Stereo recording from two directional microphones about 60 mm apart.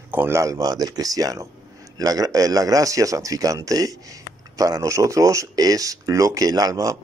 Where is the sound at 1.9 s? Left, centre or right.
Right.